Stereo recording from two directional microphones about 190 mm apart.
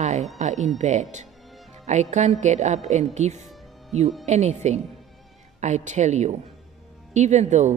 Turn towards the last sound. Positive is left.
turn(degrees=-35)  # may be behind; listen again after turning